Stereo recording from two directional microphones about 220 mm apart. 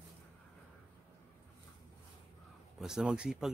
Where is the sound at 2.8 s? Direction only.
Centre (ahead or behind).